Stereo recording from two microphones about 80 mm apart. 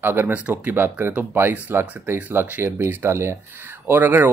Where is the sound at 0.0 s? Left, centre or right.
Right.